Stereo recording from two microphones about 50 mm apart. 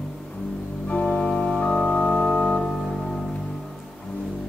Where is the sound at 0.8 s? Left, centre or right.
Left.